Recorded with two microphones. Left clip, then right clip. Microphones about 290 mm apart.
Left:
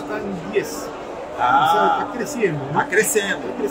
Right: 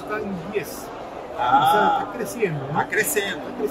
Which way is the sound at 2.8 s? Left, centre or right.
Centre.